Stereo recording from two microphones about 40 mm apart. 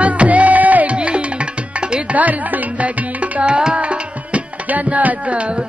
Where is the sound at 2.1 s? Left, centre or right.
Right.